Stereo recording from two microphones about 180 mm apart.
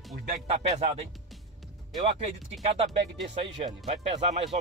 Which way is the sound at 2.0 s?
40° right (ahead or behind).